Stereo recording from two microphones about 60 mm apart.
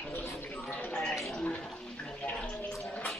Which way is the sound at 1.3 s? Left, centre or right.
Centre.